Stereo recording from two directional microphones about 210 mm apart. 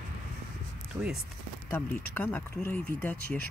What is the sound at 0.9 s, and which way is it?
Speech, 15° right (ahead or behind).